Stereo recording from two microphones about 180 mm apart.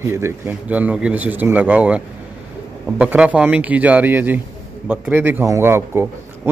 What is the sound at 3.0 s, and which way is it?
A man's voice, 10° right (ahead or behind).